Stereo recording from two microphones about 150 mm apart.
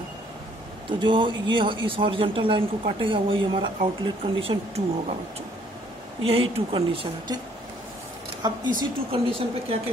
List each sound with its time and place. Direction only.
0.9 s speech: 30° right (ahead or behind)
6.2 s speech: 40° right (ahead or behind)
8.4 s speech: 25° right (ahead or behind)